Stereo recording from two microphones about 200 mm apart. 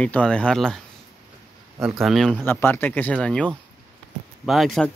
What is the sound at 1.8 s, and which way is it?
Speech, centre (ahead or behind).